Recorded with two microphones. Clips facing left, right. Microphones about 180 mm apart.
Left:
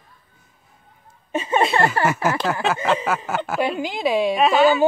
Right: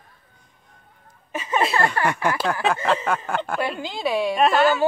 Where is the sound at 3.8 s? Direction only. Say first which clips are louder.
Left 3 dB; 15° left (ahead or behind).